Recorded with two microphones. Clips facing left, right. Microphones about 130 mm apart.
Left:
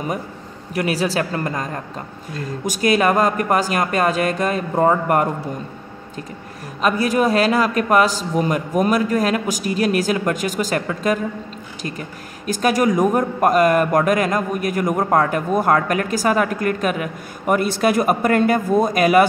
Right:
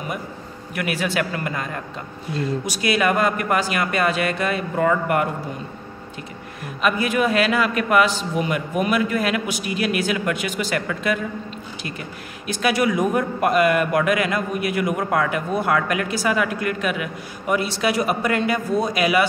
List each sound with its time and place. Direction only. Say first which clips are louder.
0.7 s a man's voice: left 3 dB; 35° left (ahead or behind)
6.8 s a man's voice: left 3 dB; 40° left (ahead or behind)